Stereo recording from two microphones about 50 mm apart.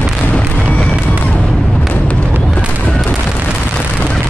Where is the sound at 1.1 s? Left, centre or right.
Left.